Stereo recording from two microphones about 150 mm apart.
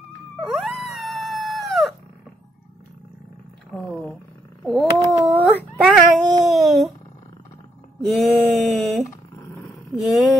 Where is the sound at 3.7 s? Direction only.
Centre (ahead or behind).